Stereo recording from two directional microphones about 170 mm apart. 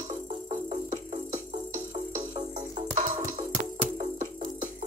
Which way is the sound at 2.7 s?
40° right (ahead or behind).